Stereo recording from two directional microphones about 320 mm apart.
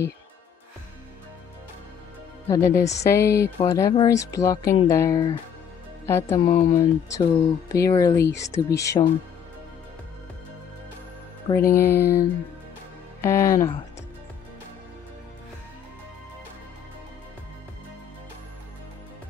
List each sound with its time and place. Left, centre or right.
2.4 s speech: centre
11.6 s music: left
11.9 s speech: centre